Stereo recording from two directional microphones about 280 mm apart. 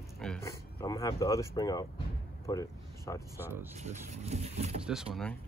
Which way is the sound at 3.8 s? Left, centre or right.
Right.